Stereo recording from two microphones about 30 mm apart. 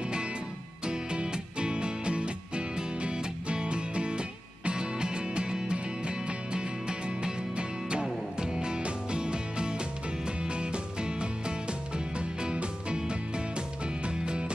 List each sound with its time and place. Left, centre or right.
0.8 s music: right